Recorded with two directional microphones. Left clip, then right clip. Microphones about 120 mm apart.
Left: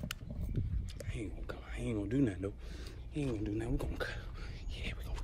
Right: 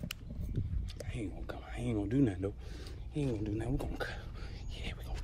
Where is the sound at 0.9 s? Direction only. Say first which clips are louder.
Right 2 dB; 25° right (ahead or behind).